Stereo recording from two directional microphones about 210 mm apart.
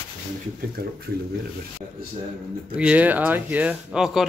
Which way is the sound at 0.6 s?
45° right (ahead or behind).